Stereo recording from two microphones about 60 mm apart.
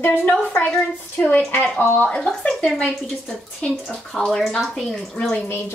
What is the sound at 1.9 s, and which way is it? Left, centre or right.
Speech, left.